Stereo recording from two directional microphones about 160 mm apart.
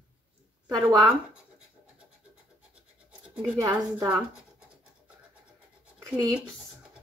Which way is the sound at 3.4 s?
20° right (ahead or behind).